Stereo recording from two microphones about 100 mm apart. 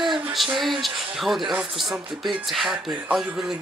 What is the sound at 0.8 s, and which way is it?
A woman's voice, centre (ahead or behind).